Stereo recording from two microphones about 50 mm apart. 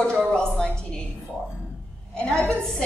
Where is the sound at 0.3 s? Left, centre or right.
Centre.